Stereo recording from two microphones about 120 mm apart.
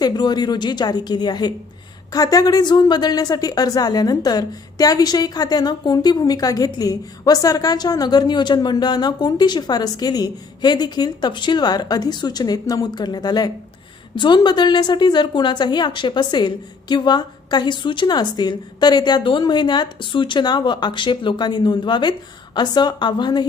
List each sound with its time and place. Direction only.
0.0 s a woman's voice: 35° left (ahead or behind)